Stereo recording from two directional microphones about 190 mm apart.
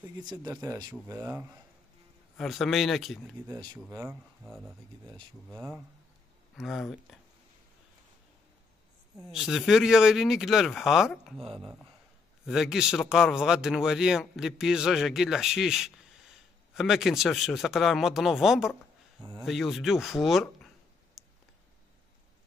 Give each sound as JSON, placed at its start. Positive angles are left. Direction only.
{"t": 0.2, "sound": "a man's voice", "side_deg": -25}
{"t": 3.4, "sound": "speech", "side_deg": -20}
{"t": 4.5, "sound": "a man's voice", "side_deg": 0}
{"t": 9.3, "sound": "a man's voice", "side_deg": 0}
{"t": 11.4, "sound": "speech", "side_deg": -25}
{"t": 12.4, "sound": "a man's voice", "side_deg": 0}